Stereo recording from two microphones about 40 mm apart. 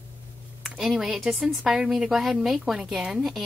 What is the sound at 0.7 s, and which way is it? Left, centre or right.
A woman's voice, centre.